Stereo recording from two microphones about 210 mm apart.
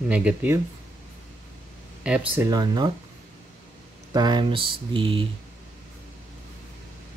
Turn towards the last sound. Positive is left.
turn(degrees=-25)  # may be behind; listen again after turning